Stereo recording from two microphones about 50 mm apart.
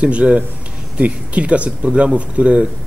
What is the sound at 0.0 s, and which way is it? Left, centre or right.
Speech, right.